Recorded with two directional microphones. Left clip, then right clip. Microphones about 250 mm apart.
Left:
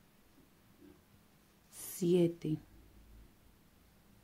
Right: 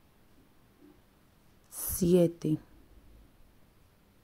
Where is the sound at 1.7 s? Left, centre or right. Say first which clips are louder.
Right 6 dB; right.